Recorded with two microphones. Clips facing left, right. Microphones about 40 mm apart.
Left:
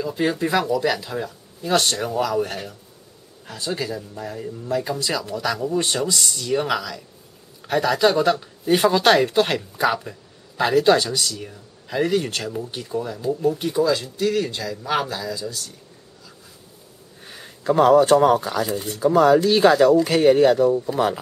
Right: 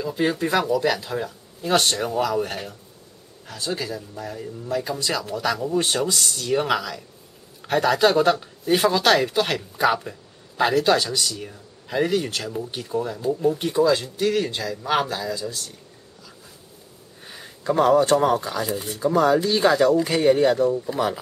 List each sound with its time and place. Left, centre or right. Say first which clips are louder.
0.0 s speech: left 1 dB; centre
3.4 s speech: left 1 dB; centre
12.6 s speech: right 1 dB; centre
17.2 s speech: even; centre